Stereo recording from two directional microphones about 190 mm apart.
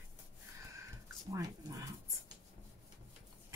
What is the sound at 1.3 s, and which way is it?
Dog, 15° right (ahead or behind).